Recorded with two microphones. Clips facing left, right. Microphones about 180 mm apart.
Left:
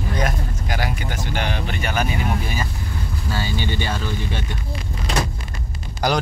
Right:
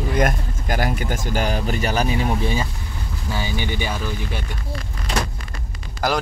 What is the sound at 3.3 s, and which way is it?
Speech, 15° right (ahead or behind).